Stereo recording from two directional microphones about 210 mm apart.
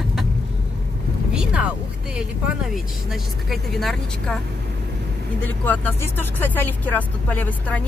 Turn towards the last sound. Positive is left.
turn(degrees=10)  # may be behind; listen again after turning